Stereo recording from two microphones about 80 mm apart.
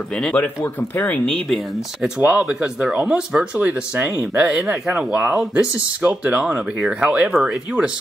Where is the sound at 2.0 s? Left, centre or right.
Centre.